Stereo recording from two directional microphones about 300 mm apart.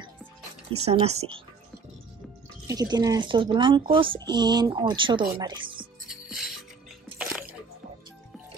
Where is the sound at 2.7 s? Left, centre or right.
Centre.